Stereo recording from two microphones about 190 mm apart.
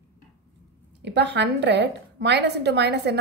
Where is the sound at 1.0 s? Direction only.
65° right (ahead or behind).